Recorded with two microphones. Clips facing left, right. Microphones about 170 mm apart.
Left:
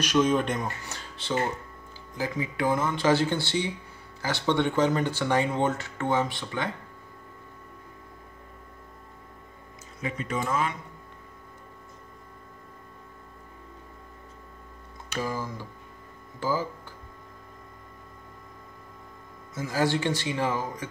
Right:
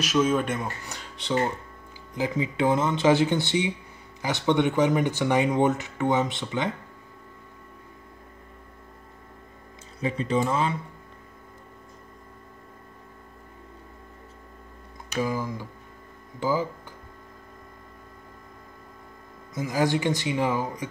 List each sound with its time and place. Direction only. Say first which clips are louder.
0.0 s speech: even; 5° right (ahead or behind); by 6.7 s 20° right (ahead or behind)
9.9 s speech: right 6 dB; 30° right (ahead or behind)
15.1 s speech: right 4 dB; 15° right (ahead or behind)
19.5 s speech: right 2 dB; 15° right (ahead or behind)